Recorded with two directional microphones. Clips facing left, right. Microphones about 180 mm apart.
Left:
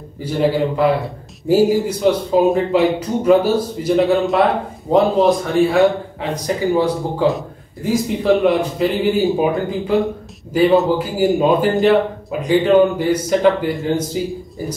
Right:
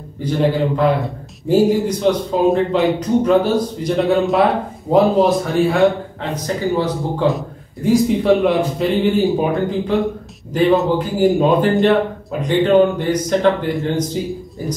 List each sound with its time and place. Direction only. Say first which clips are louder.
0.2 s a man's voice: even; 5° left (ahead or behind)
6.3 s speech: left 2 dB; 10° left (ahead or behind)
7.2 s a man's voice: left 1 dB; centre (ahead or behind)